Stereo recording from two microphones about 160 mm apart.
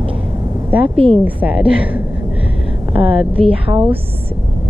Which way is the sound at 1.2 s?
10° right (ahead or behind).